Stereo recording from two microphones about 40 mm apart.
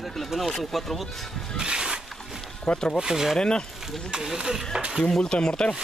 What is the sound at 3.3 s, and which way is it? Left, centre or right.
Speech, left.